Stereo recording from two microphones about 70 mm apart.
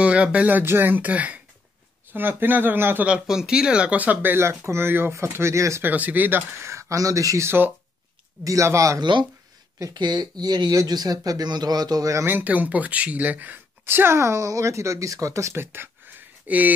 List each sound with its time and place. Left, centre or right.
0.0 s speech: centre
3.1 s speech: centre; by 5.8 s right
5.8 s speech: right
6.6 s speech: right
7.4 s speech: right
8.5 s speech: right
9.9 s speech: right
10.9 s speech: right
12.3 s speech: right